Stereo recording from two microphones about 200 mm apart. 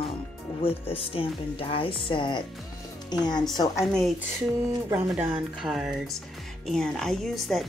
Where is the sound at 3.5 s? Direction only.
20° left (ahead or behind).